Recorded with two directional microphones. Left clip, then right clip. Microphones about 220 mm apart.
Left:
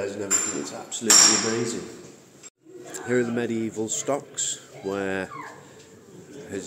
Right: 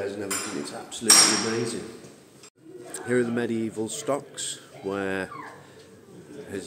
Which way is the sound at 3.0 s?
Centre (ahead or behind).